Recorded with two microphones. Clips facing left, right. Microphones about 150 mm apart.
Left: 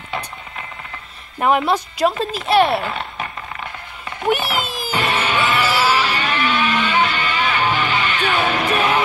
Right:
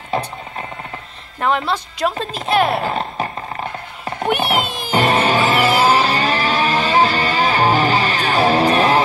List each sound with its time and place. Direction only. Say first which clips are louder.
1.4 s a woman's voice: left 2 dB; 10° left (ahead or behind)
2.8 s a sound: right 5 dB; 35° right (ahead or behind)
4.3 s a child's voice: right 1 dB; centre (ahead or behind)
4.9 s music: right 5 dB; 35° right (ahead or behind)